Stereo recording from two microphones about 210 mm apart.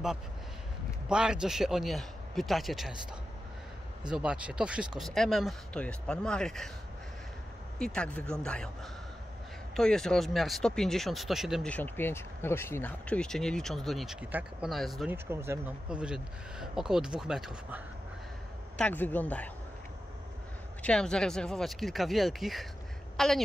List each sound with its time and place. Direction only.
1.0 s speech: 5° right (ahead or behind)
4.1 s speech: 5° right (ahead or behind)
7.8 s speech: 5° left (ahead or behind)
9.8 s speech: centre (ahead or behind)
15.2 s speech: 10° right (ahead or behind)
18.8 s speech: 5° left (ahead or behind)
20.8 s a woman's voice: 5° left (ahead or behind)